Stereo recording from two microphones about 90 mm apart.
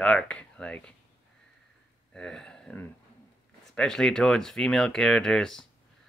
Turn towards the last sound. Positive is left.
turn(degrees=5)  # may be behind; listen again after turning